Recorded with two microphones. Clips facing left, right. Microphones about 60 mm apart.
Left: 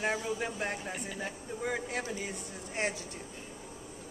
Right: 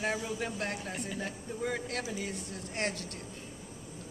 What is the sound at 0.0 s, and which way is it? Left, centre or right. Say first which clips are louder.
Speech: left 1 dB; centre.